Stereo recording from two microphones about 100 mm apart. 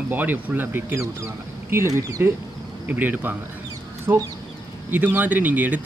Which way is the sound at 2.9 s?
20° right (ahead or behind).